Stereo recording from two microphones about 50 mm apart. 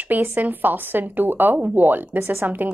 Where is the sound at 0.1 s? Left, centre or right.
Right.